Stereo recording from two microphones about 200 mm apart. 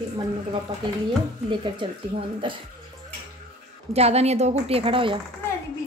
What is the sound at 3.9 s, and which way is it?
A woman's voice, 30° right (ahead or behind).